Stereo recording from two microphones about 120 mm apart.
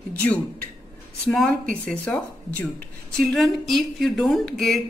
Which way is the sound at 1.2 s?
5° left (ahead or behind).